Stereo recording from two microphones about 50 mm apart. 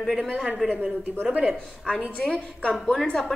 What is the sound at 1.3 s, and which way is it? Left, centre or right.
Speech, centre.